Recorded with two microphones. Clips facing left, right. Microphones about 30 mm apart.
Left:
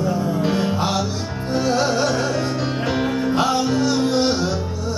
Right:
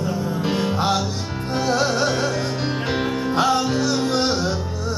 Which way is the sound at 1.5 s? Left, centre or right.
Right.